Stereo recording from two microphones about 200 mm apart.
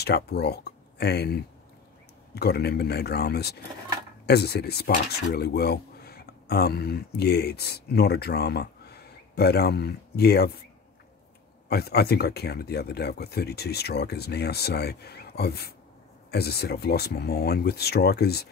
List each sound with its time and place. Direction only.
0.0 s speech: 55° left (ahead or behind)
11.7 s speech: 55° left (ahead or behind)